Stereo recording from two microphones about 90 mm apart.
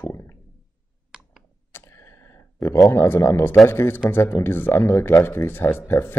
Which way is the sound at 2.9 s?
30° left (ahead or behind).